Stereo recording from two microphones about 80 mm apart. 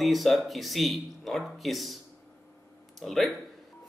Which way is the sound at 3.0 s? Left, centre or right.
Centre.